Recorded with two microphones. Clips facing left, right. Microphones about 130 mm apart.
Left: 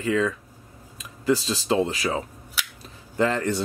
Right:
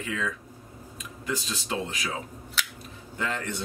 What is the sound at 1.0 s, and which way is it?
Speech, 35° left (ahead or behind).